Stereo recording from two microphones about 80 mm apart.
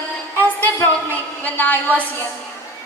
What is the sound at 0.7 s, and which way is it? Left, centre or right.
A woman's voice, left.